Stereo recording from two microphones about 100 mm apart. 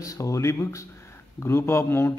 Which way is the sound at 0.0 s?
35° left (ahead or behind).